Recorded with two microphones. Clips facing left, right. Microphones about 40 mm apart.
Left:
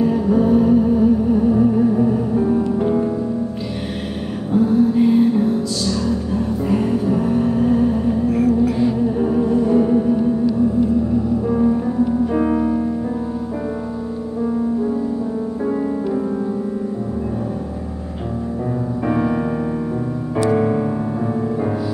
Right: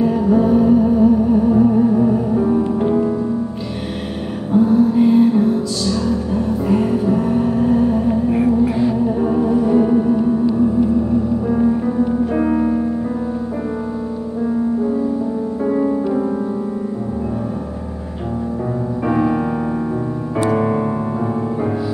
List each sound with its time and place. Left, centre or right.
0.0 s music: centre
4.5 s music: centre
8.1 s music: right
8.7 s music: centre
11.4 s music: centre
15.7 s music: centre
19.0 s music: centre
20.4 s music: centre